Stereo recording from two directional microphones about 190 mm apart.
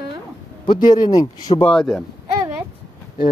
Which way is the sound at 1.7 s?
Centre (ahead or behind).